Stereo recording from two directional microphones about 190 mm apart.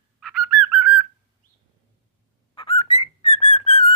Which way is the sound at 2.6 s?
30° left (ahead or behind).